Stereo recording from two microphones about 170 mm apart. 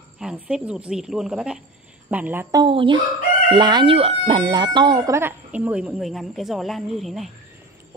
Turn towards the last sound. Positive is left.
turn(degrees=0)  # may be behind; listen again after turning